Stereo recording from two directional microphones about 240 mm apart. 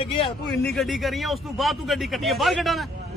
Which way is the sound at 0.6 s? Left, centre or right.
Centre.